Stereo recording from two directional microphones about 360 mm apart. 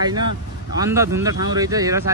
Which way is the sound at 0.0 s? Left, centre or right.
Centre.